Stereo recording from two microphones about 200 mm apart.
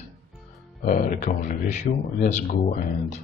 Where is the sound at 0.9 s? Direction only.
40° left (ahead or behind).